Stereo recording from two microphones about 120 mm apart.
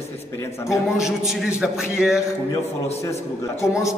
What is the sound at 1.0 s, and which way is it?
A man's voice, 5° right (ahead or behind).